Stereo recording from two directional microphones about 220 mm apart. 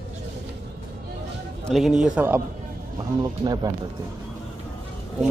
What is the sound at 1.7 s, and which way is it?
Speech, centre (ahead or behind).